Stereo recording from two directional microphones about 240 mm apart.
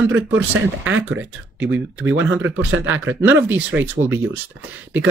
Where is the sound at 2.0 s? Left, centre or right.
Right.